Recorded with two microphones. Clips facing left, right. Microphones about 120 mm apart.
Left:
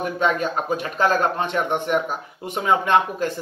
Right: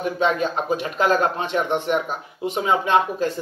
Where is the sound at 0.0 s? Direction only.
45° left (ahead or behind).